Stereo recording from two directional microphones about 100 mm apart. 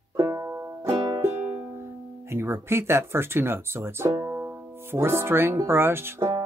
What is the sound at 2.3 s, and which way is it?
Speech, 25° right (ahead or behind).